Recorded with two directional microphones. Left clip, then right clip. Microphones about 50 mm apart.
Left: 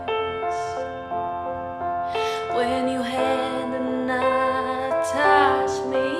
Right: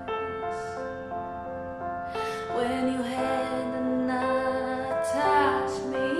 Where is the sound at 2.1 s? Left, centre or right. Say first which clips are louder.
Left 6 dB; centre.